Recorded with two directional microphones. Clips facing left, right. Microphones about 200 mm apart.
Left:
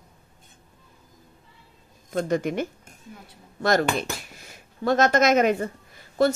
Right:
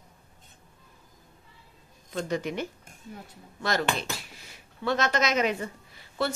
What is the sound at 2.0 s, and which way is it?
Speech, 50° left (ahead or behind).